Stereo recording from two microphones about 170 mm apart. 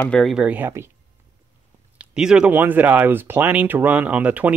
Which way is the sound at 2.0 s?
5° right (ahead or behind).